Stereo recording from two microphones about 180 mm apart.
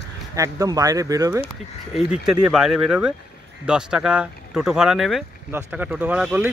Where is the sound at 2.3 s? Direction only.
Centre (ahead or behind).